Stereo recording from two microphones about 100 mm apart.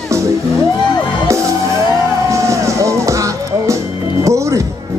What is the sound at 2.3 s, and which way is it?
Music, 30° right (ahead or behind).